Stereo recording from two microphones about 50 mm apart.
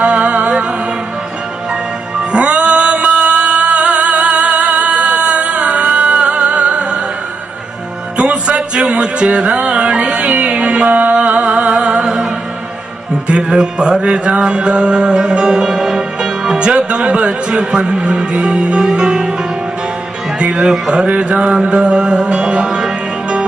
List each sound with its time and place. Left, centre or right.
0.0 s music: right
8.2 s music: right
13.3 s speech: centre
14.0 s music: right
20.3 s mantra: right
20.7 s speech: centre
21.1 s mantra: right
21.6 s music: centre